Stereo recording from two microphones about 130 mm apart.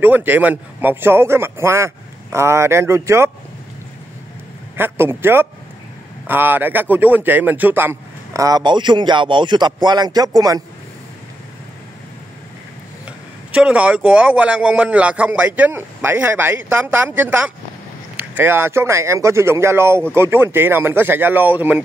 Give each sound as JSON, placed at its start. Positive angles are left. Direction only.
{"t": 0.0, "sound": "a man's voice", "side_deg": -15}
{"t": 4.7, "sound": "a man's voice", "side_deg": -15}
{"t": 13.5, "sound": "a man's voice", "side_deg": -10}